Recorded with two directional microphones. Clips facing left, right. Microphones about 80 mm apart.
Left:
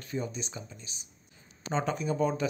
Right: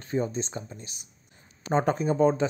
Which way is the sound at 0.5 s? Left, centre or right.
Right.